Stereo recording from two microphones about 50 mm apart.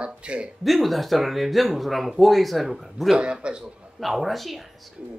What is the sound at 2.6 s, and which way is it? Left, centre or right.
Speech, centre.